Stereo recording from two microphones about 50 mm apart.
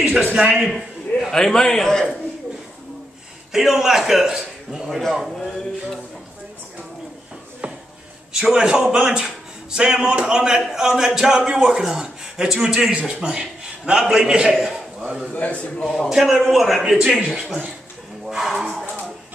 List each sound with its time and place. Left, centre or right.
0.2 s a man's voice: right
0.6 s a sound: centre
1.3 s a man's voice: centre
3.5 s a man's voice: centre
7.6 s a sound: right
8.3 s a man's voice: centre
15.3 s a man's voice: left
15.8 s speech: centre
16.1 s a man's voice: centre
18.3 s speech: centre